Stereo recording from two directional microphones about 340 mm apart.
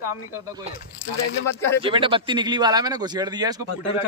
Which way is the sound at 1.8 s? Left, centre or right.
Centre.